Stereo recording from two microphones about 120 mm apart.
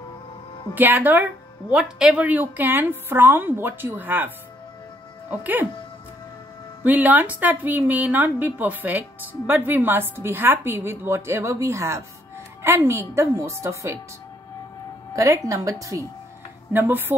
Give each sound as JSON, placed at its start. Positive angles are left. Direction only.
{"t": 0.7, "sound": "a woman's voice", "side_deg": -15}
{"t": 5.4, "sound": "a woman's voice", "side_deg": -15}
{"t": 6.8, "sound": "a woman's voice", "side_deg": -15}
{"t": 15.1, "sound": "a woman's voice", "side_deg": -25}